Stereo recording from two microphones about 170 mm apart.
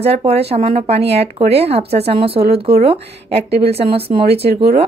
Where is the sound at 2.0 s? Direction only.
35° right (ahead or behind).